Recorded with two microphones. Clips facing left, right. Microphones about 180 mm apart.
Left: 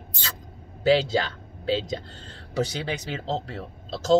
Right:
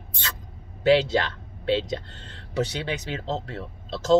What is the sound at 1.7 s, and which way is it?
Speech, 35° left (ahead or behind).